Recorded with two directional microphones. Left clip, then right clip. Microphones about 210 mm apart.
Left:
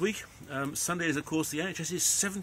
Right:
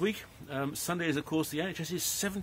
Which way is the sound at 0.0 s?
10° right (ahead or behind).